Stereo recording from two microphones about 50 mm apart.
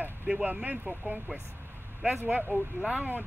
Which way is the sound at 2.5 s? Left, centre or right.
Right.